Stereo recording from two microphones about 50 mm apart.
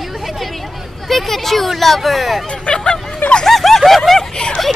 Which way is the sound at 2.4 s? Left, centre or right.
Left.